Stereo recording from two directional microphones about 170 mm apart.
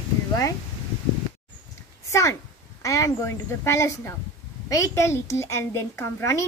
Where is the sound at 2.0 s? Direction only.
20° left (ahead or behind).